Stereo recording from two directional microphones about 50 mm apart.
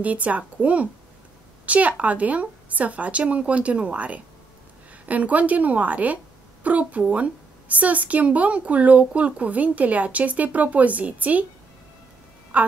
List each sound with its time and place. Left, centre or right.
0.0 s a woman's voice: right
12.5 s a woman's voice: right